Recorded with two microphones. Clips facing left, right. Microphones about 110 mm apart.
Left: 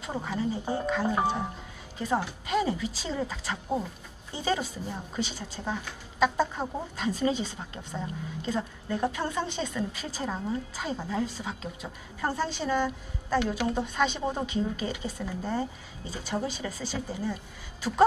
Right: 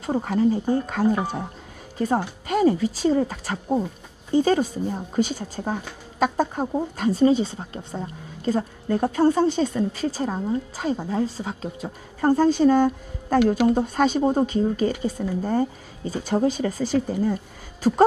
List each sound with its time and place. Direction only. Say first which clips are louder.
0.0 s a woman's voice: right 10 dB; 50° right (ahead or behind)
7.0 s speech: right 9 dB; 35° right (ahead or behind)
8.5 s a woman's voice: right 8 dB; 45° right (ahead or behind)